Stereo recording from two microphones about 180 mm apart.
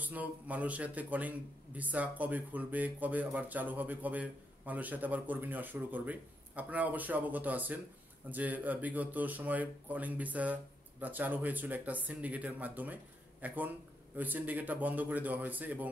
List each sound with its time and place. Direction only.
0.0 s speech: 10° right (ahead or behind)